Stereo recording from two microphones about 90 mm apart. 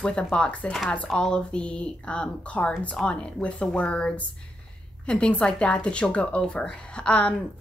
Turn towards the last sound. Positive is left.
turn(degrees=10)  # may be behind; listen again after turning